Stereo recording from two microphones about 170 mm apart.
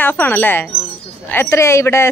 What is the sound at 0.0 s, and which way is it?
Speech, 10° left (ahead or behind).